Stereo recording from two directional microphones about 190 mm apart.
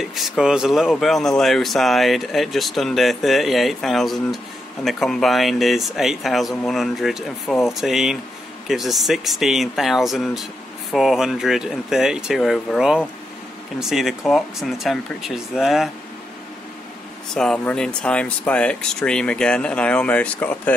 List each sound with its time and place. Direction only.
0.0 s speech: centre (ahead or behind)
17.3 s speech: 5° left (ahead or behind)